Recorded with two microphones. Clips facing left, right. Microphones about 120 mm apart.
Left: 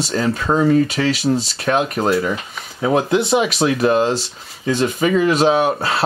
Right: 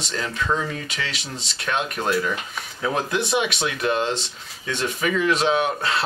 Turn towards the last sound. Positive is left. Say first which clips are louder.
# left 5 dB
turn(degrees=35)  # may be behind; listen again after turning